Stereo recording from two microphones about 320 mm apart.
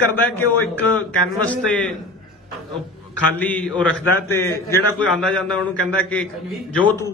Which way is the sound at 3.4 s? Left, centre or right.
Centre.